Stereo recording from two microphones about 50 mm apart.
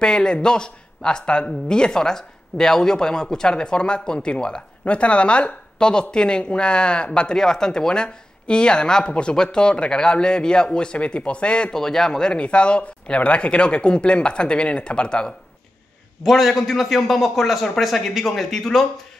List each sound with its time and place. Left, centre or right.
0.0 s speech: centre
16.2 s a man's voice: centre